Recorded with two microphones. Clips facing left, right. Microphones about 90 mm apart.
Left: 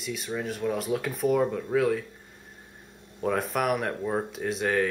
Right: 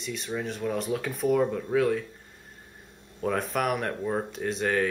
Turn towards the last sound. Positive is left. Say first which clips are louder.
# even
turn(degrees=0)  # may be behind; listen again after turning